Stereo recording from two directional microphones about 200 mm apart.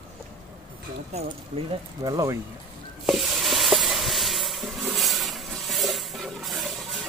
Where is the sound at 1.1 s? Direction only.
25° right (ahead or behind).